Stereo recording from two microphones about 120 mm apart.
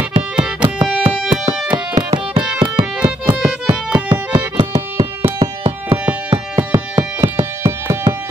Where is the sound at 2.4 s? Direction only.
10° right (ahead or behind).